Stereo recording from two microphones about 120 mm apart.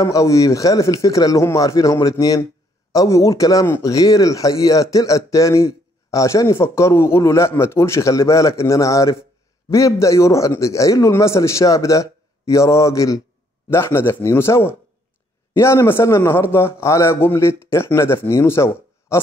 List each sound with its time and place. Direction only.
0.0 s speech: 25° left (ahead or behind)